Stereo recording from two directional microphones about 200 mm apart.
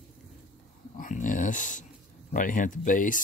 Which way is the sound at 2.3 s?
40° left (ahead or behind).